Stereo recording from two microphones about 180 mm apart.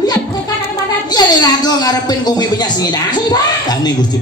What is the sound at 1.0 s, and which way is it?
Speech, 20° left (ahead or behind).